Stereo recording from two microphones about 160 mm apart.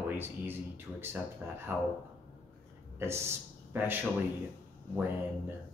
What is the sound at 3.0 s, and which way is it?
Speech, 15° right (ahead or behind).